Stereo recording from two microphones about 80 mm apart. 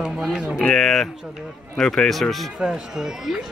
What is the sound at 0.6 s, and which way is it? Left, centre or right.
Speech, centre.